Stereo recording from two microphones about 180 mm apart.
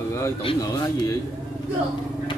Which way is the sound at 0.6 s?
20° left (ahead or behind).